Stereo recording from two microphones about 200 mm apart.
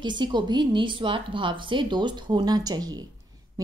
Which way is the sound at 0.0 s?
20° right (ahead or behind).